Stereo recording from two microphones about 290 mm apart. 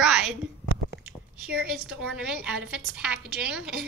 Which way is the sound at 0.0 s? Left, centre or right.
Centre.